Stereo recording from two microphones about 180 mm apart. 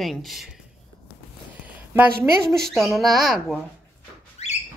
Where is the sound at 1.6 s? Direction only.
10° right (ahead or behind).